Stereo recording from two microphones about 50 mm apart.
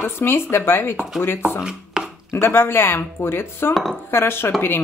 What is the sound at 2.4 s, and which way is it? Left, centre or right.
Speech, left.